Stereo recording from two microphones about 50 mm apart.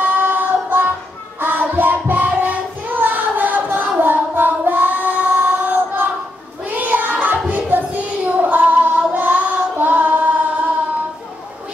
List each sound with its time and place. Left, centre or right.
0.0 s child singing: right
9.1 s music: right